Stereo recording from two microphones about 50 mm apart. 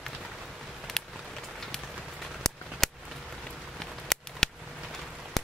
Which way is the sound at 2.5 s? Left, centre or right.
Centre.